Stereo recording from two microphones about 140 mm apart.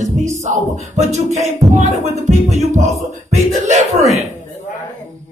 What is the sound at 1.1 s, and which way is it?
Music, 55° right (ahead or behind).